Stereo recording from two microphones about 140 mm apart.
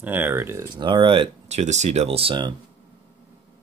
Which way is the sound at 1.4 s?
55° right (ahead or behind).